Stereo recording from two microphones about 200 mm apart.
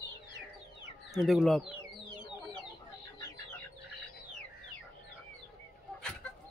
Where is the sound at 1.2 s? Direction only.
Centre (ahead or behind).